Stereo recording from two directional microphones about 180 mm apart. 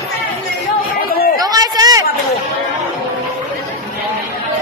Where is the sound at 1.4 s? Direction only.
20° right (ahead or behind).